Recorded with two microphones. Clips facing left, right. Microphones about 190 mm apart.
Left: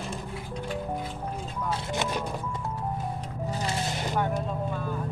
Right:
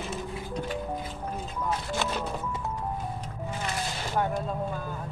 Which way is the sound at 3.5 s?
30° left (ahead or behind).